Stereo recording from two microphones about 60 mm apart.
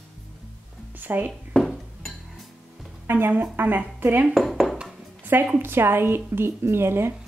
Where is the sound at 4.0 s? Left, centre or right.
Right.